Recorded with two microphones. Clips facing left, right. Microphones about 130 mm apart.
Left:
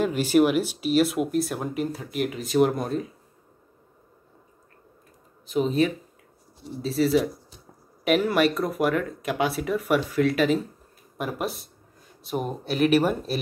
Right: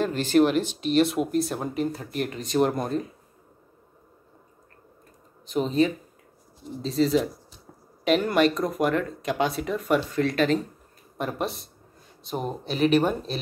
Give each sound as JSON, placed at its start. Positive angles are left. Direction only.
{"t": 0.0, "sound": "speech", "side_deg": 10}
{"t": 5.5, "sound": "speech", "side_deg": 0}